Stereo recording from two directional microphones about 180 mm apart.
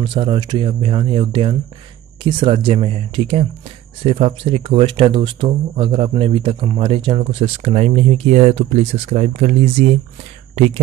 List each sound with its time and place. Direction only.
0.0 s speech: 30° right (ahead or behind)